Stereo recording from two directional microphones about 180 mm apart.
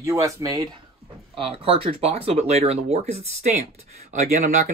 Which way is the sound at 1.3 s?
30° right (ahead or behind).